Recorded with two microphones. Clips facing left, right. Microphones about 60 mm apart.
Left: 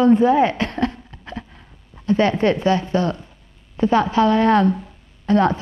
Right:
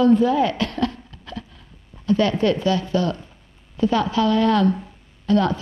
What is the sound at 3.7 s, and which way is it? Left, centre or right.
A woman's voice, left.